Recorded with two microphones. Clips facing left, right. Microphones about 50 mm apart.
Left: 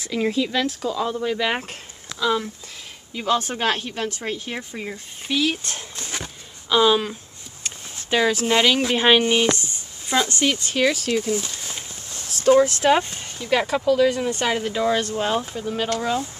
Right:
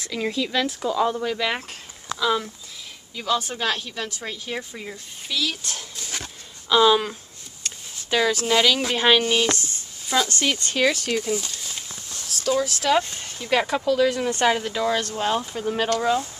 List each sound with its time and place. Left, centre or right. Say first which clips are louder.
0.0 s speech: left 4 dB; centre
0.8 s speech: right 2 dB; centre
1.2 s speech: left 2 dB; centre
2.1 s speech: left 1 dB; centre
3.5 s speech: left 3 dB; left
6.1 s a sound: left 2 dB; centre
7.6 s a sound: left 1 dB; centre
8.9 s speech: left 2 dB; left
10.4 s speech: left 1 dB; centre
11.5 s a sound: left 1 dB; left
12.3 s speech: left 8 dB; left
13.4 s speech: left 1 dB; centre
15.5 s speech: right 1 dB; centre
16.0 s speech: right 2 dB; centre